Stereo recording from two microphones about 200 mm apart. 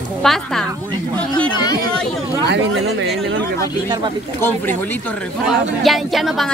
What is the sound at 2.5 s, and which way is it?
Speech, 65° right (ahead or behind).